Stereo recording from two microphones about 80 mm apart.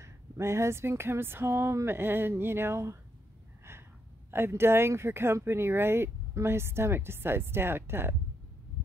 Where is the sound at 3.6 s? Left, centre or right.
Right.